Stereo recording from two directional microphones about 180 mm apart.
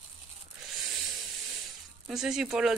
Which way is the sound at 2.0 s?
5° right (ahead or behind).